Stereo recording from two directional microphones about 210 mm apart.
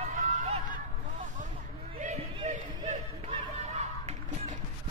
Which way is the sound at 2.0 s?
35° right (ahead or behind).